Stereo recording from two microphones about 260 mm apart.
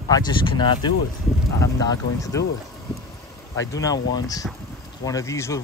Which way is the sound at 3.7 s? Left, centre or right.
Centre.